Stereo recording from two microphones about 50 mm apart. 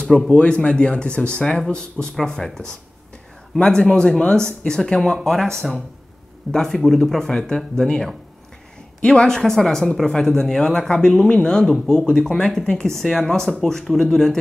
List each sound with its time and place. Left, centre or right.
0.3 s speech: left
3.5 s speech: left